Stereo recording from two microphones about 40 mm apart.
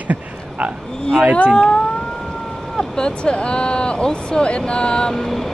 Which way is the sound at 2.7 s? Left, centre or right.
Centre.